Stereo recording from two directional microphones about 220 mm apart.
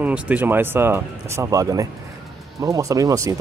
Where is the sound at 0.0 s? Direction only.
5° right (ahead or behind).